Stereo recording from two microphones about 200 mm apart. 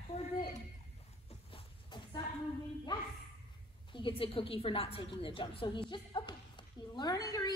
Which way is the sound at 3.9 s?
25° left (ahead or behind).